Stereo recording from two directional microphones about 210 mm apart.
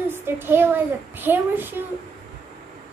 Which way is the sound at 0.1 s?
10° right (ahead or behind).